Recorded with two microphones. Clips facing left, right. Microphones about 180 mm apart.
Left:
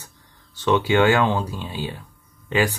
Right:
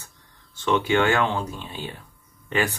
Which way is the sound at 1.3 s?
10° left (ahead or behind).